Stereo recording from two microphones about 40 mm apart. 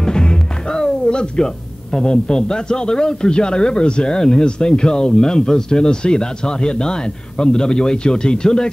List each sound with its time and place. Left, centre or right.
0.0 s music: centre
1.9 s a man's voice: centre